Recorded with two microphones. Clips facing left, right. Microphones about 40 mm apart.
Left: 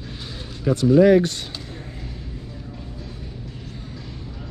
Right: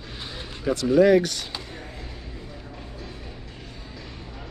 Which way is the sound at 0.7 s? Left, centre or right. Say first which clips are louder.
Left 3 dB; centre.